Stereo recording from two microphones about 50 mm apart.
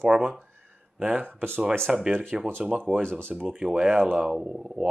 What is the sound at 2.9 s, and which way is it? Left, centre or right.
Speech, centre.